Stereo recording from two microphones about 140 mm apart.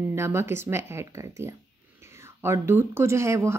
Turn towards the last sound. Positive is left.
turn(degrees=-20)  # may be behind; listen again after turning